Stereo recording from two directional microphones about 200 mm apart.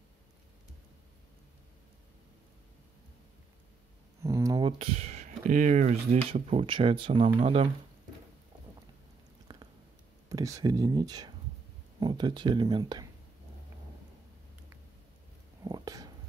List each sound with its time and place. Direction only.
4.2 s speech: 15° right (ahead or behind); by 6.6 s 40° right (ahead or behind)
6.6 s speech: 25° right (ahead or behind)
10.3 s speech: 15° right (ahead or behind)
15.6 s whispering: 20° right (ahead or behind)